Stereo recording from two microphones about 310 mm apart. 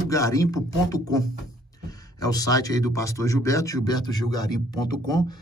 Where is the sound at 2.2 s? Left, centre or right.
Centre.